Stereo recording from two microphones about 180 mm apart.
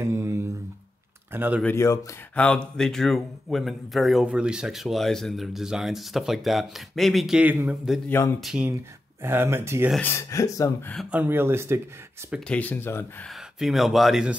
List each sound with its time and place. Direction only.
0.0 s a sound: 15° right (ahead or behind)
1.3 s speech: 10° right (ahead or behind)
1.6 s speech: 15° left (ahead or behind); by 9.8 s 15° right (ahead or behind)
9.8 s speech: 5° left (ahead or behind)
10.1 s speech: 15° left (ahead or behind)
11.0 s speech: 10° right (ahead or behind)
12.4 s speech: 10° left (ahead or behind)
13.3 s speech: centre (ahead or behind)